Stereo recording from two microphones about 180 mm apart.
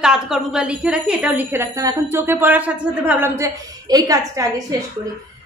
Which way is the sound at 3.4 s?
20° right (ahead or behind).